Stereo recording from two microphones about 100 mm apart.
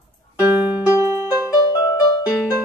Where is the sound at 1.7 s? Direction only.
40° left (ahead or behind).